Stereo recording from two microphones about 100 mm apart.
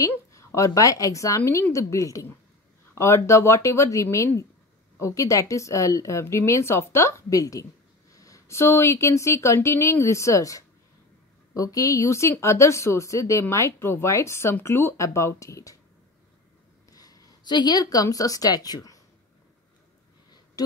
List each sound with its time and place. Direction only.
0.3 s a sound: 30° left (ahead or behind)
0.7 s speech: 35° left (ahead or behind)
16.9 s speech: 40° left (ahead or behind)